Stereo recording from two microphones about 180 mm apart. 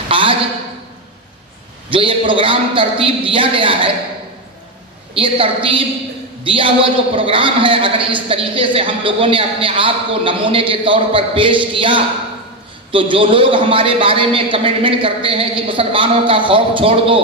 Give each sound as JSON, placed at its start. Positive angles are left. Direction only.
{"t": 0.1, "sound": "a sound", "side_deg": -30}
{"t": 1.9, "sound": "a man's voice", "side_deg": -30}
{"t": 5.1, "sound": "a man's voice", "side_deg": -30}